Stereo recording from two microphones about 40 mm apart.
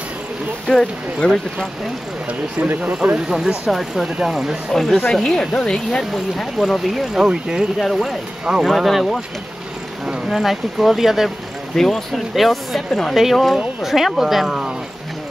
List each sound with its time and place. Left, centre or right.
0.7 s speech: centre
2.8 s speech: right
3.3 s speech: centre
4.7 s speech: centre
5.1 s speech: centre
6.1 s speech: centre
7.2 s speech: right
7.8 s speech: centre
10.0 s speech: centre
11.2 s speech: centre